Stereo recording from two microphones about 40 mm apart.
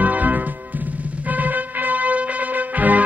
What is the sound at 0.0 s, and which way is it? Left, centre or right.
Music, right.